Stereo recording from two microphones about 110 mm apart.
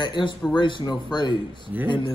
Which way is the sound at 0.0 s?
45° left (ahead or behind).